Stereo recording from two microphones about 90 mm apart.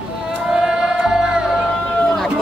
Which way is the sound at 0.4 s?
5° right (ahead or behind).